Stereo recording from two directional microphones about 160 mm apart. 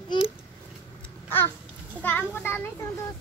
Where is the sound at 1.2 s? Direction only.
15° left (ahead or behind).